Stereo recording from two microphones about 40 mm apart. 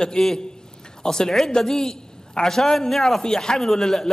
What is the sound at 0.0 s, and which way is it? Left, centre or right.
A woman's voice, centre.